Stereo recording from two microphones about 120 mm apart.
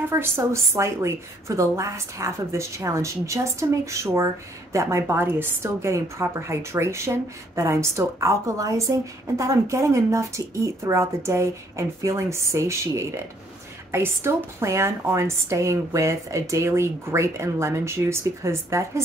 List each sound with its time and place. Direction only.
0.1 s a woman's voice: 20° right (ahead or behind)